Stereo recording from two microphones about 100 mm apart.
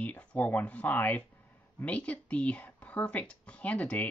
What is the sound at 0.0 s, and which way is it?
Speech, 15° left (ahead or behind).